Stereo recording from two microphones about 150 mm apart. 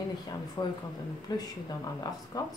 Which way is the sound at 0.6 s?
25° left (ahead or behind).